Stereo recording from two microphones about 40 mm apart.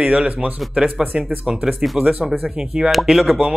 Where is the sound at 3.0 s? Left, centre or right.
Centre.